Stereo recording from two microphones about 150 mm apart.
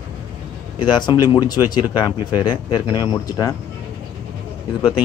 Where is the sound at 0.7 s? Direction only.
30° left (ahead or behind).